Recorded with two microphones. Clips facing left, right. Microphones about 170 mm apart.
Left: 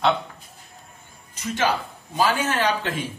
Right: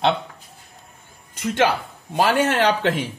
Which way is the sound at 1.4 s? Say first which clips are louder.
Right 4 dB; 65° right (ahead or behind).